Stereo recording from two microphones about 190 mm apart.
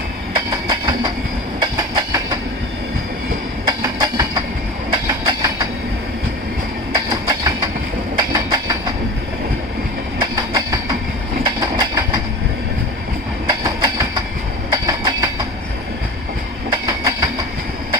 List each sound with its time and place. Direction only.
0.3 s train: 25° right (ahead or behind)
3.6 s train: 20° right (ahead or behind)
6.9 s train: 20° right (ahead or behind)
10.2 s train: 20° right (ahead or behind)
13.5 s train: 20° right (ahead or behind)
16.7 s train: 15° right (ahead or behind)